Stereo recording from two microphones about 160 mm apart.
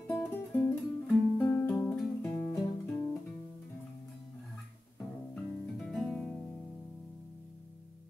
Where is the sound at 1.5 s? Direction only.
15° left (ahead or behind).